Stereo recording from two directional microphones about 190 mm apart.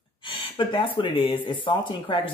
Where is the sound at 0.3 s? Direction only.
25° left (ahead or behind).